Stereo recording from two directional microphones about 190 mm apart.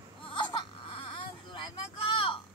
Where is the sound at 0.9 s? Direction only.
25° left (ahead or behind).